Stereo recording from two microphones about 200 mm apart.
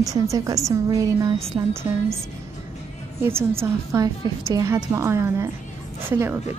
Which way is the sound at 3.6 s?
15° right (ahead or behind).